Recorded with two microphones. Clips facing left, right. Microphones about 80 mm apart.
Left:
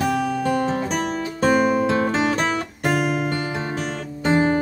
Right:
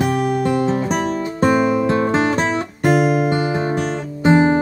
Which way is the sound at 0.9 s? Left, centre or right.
Right.